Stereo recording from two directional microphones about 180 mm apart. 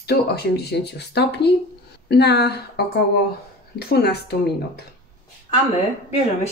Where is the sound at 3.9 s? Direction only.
60° left (ahead or behind).